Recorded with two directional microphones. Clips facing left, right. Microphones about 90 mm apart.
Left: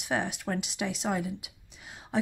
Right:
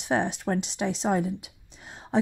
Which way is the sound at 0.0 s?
30° right (ahead or behind).